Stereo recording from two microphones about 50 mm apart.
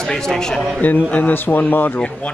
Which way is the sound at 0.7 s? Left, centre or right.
Left.